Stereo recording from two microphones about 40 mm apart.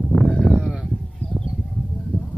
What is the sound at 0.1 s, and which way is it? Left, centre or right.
Sheep, centre.